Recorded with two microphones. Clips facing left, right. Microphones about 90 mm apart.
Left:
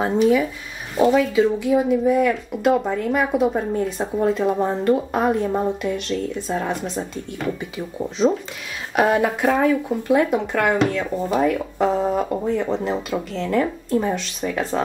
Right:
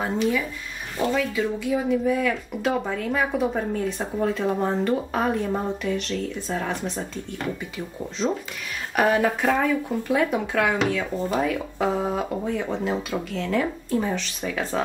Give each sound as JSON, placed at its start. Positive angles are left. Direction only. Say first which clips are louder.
{"t": 0.0, "sound": "a woman's voice", "louder": "left 7 dB", "side_deg": 15}
{"t": 2.2, "sound": "a woman's voice", "louder": "left 5 dB", "side_deg": 5}
{"t": 8.9, "sound": "a woman's voice", "louder": "left 2 dB", "side_deg": 10}
{"t": 10.3, "sound": "speech", "louder": "left 3 dB", "side_deg": 0}